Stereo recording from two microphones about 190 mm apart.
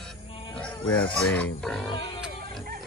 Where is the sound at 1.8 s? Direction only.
25° left (ahead or behind).